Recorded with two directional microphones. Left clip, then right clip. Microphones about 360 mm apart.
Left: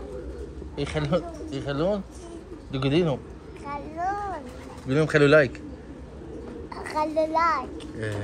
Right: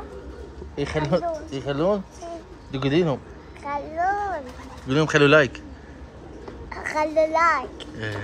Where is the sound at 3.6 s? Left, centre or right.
Right.